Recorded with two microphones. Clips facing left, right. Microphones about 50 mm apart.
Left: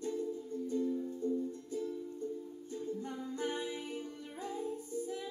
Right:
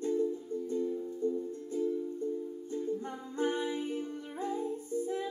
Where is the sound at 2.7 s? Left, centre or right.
Right.